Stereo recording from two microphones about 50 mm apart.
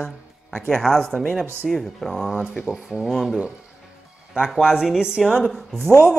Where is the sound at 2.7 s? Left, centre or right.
Centre.